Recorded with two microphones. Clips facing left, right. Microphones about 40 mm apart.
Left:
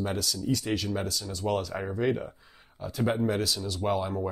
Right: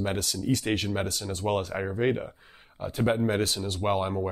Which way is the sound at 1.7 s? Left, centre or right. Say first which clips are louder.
Right 2 dB; right.